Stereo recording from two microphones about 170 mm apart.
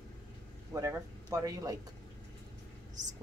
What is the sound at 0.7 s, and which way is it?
Speech, 20° right (ahead or behind).